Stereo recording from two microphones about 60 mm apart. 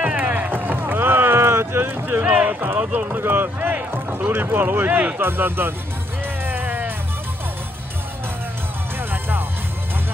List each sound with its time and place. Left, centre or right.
0.0 s boat: right
2.2 s a sound: right
2.8 s speech: right
3.2 s speech: right
5.2 s speech: right
6.4 s music: right